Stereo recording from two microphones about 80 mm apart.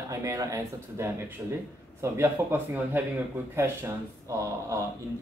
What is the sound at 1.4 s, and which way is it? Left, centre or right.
Speech, right.